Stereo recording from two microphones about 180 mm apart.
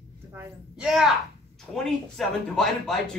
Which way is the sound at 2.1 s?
Centre (ahead or behind).